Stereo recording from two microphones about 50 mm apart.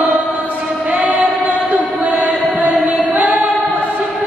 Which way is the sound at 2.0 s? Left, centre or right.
Right.